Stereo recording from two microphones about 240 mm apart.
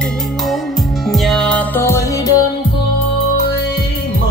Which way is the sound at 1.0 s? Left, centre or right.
Centre.